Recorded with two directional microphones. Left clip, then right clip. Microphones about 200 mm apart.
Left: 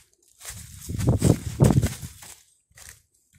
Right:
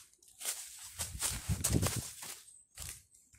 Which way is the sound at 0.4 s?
40° left (ahead or behind).